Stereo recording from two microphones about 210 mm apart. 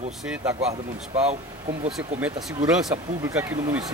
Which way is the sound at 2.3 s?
20° right (ahead or behind).